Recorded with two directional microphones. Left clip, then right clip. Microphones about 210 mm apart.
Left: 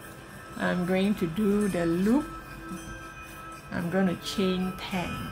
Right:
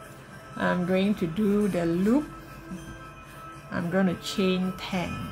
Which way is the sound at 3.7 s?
15° right (ahead or behind).